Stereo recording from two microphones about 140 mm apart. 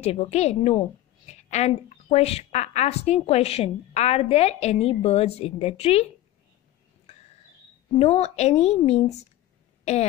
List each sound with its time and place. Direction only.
0.0 s a woman's voice: 50° left (ahead or behind)
7.9 s a woman's voice: 45° left (ahead or behind)